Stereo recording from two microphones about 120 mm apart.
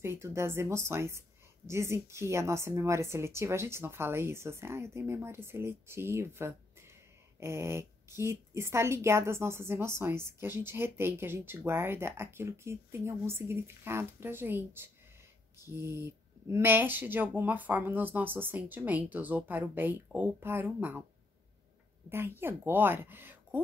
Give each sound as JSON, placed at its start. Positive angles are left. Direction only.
{"t": 0.0, "sound": "a woman's voice", "side_deg": -20}
{"t": 22.1, "sound": "speech", "side_deg": -20}